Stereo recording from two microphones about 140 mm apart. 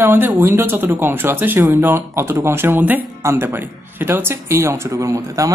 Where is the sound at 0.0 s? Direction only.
15° right (ahead or behind).